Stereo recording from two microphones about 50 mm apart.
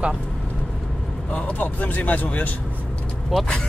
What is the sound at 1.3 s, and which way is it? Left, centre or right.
Speech, left.